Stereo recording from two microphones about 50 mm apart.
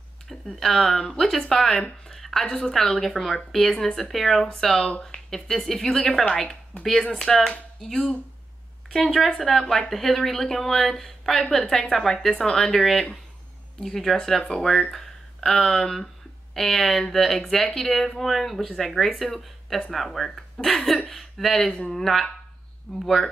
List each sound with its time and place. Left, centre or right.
0.3 s speech: centre
21.7 s speech: centre
22.0 s speech: centre